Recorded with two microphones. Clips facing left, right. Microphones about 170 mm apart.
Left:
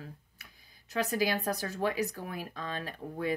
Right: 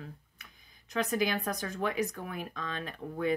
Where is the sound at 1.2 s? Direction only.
35° left (ahead or behind).